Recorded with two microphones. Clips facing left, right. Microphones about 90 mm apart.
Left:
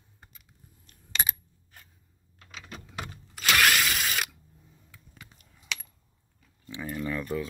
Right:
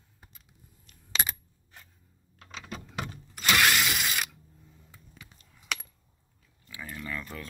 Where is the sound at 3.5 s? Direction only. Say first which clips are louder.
Left 1 dB; 5° right (ahead or behind).